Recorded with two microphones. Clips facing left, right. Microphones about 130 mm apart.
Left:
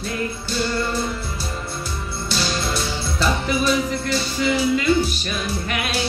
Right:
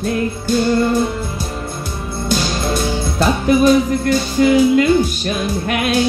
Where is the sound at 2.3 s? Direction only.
50° right (ahead or behind).